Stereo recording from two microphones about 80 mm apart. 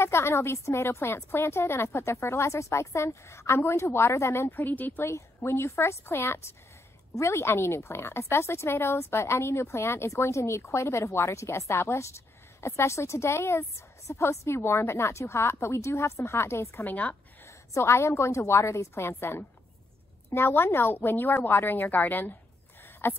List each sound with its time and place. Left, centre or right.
0.0 s a woman's voice: left
5.0 s a woman's voice: left
16.8 s a woman's voice: centre
17.5 s a woman's voice: left